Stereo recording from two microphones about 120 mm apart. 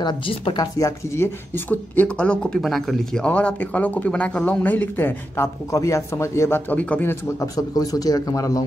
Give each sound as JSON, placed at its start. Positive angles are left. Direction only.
{"t": 0.0, "sound": "speech", "side_deg": 40}
{"t": 0.7, "sound": "speech", "side_deg": 25}
{"t": 7.3, "sound": "a man's voice", "side_deg": 30}